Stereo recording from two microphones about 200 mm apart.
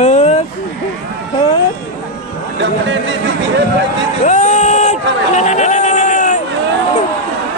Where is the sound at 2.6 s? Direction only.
65° right (ahead or behind).